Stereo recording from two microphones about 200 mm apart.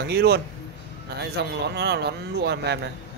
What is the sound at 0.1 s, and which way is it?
A man's voice, 55° right (ahead or behind).